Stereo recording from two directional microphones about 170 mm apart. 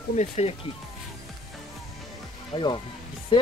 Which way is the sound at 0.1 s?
40° left (ahead or behind).